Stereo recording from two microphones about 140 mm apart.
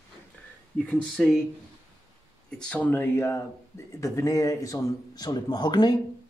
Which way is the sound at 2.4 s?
5° left (ahead or behind).